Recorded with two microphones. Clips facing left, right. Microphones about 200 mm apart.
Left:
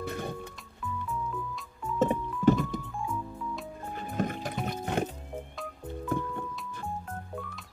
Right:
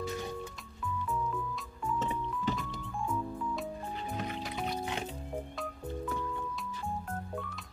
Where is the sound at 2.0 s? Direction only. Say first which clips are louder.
Left 11 dB; 50° left (ahead or behind).